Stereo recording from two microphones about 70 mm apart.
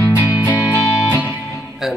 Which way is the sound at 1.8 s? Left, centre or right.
Centre.